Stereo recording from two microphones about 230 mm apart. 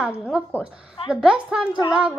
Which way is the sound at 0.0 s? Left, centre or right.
Centre.